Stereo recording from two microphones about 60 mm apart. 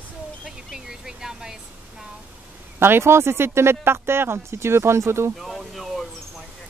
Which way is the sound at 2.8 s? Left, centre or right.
Right.